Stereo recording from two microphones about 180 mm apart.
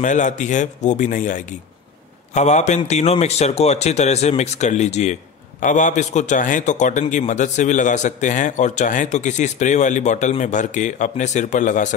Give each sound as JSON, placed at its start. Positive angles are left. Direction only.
{"t": 0.0, "sound": "a man's voice", "side_deg": 45}